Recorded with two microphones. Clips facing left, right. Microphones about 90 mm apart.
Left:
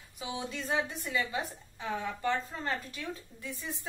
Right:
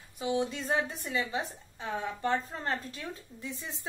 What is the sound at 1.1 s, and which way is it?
A woman's voice, 20° right (ahead or behind).